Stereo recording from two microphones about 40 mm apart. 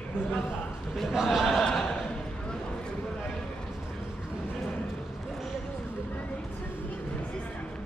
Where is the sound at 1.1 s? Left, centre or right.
Centre.